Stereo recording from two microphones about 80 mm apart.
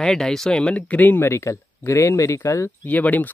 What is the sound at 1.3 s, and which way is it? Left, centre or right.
Speech, left.